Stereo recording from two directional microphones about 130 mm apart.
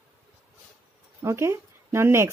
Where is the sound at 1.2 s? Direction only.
20° right (ahead or behind).